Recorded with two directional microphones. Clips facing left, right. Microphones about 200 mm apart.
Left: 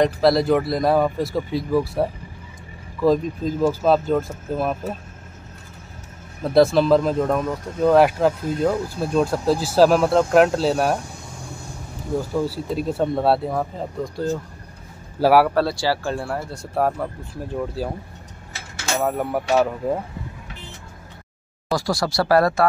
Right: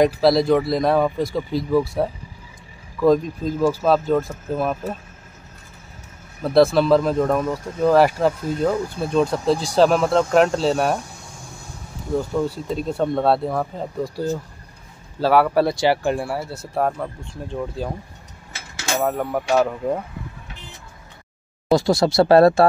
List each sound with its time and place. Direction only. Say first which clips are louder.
0.0 s speech: right 1 dB; centre (ahead or behind)
6.4 s speech: even; centre (ahead or behind)
12.4 s speech: even; 5° left (ahead or behind)
15.1 s speech: left 2 dB; 10° left (ahead or behind)
15.5 s speech: right 3 dB; 20° right (ahead or behind); by 17.8 s 5° left (ahead or behind)
18.9 s speech: even; 5° left (ahead or behind)
21.7 s speech: right 6 dB; 25° right (ahead or behind)